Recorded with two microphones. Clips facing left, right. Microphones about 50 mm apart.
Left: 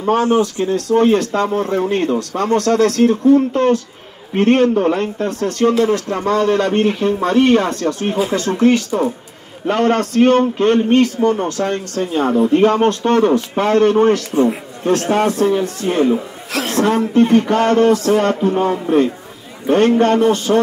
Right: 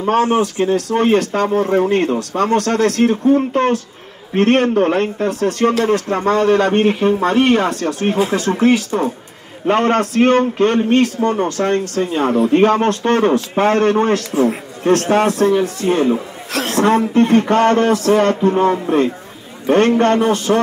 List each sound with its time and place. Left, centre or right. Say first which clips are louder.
0.0 s a man's voice: even; right
8.1 s speech: right 3 dB; right
8.4 s a man's voice: even; right
12.4 s a man's voice: even; right
16.6 s a man's voice: right 2 dB; right